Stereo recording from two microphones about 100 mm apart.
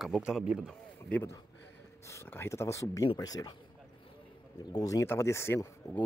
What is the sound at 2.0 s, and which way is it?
A man's voice, 25° left (ahead or behind).